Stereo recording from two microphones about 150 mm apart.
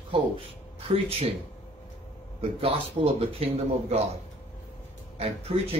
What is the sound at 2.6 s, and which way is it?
Speech, 40° right (ahead or behind).